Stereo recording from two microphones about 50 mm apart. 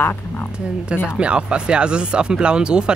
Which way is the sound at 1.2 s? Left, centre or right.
Right.